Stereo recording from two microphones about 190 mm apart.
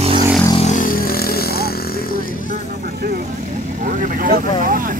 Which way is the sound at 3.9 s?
45° right (ahead or behind).